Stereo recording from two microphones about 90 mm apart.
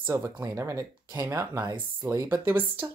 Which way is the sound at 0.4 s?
35° right (ahead or behind).